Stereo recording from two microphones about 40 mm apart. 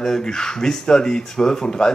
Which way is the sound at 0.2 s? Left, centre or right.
Centre.